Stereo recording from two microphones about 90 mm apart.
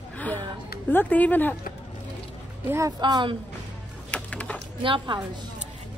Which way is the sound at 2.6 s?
35° right (ahead or behind).